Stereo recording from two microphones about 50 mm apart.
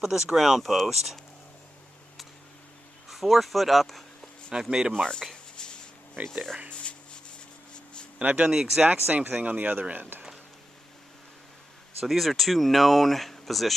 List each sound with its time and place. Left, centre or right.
0.0 s speech: centre
3.1 s speech: centre
4.5 s speech: centre
5.3 s a sound: centre
8.2 s speech: right
8.5 s speech: centre
8.8 s speech: right
12.0 s speech: centre